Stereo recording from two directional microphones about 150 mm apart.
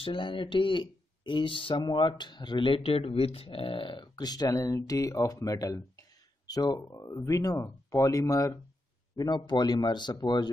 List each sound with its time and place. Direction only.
0.0 s speech: 35° left (ahead or behind)